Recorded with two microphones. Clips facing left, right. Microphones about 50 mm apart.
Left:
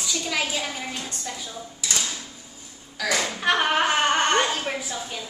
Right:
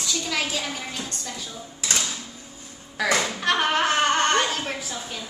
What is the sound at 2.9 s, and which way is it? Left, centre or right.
Speech, right.